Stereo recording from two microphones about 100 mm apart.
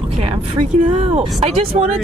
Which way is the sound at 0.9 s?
85° right.